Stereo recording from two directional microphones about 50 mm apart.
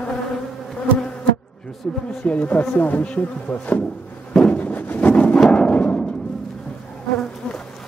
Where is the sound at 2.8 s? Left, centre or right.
Left.